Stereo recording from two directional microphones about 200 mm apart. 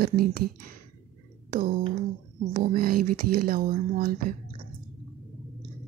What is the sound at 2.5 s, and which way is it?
Speech, 45° right (ahead or behind).